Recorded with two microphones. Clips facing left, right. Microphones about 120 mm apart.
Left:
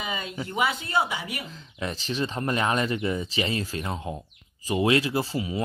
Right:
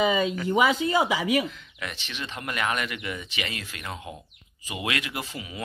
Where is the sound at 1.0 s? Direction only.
90° right.